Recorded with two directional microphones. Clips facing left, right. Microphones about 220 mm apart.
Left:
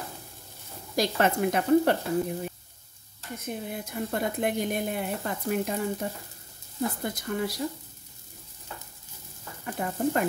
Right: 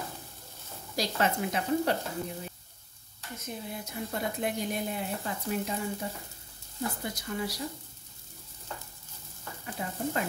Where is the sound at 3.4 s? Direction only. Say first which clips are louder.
Left 4 dB; 55° left (ahead or behind).